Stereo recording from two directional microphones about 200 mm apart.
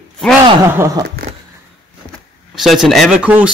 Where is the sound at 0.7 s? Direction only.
15° right (ahead or behind).